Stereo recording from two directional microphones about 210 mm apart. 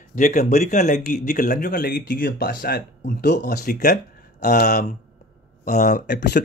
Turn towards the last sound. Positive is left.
turn(degrees=50)  # may be behind; listen again after turning